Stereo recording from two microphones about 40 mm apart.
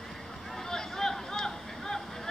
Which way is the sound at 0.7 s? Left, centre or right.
Centre.